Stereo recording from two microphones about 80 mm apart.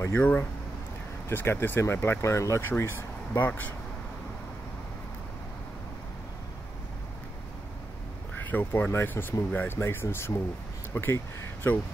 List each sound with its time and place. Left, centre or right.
0.2 s speech: centre
8.4 s speech: left